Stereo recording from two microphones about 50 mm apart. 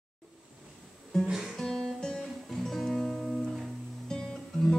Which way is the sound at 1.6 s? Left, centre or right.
Centre.